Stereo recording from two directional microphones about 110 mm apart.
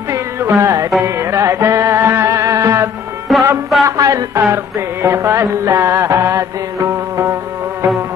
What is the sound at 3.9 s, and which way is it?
Music, 30° right (ahead or behind).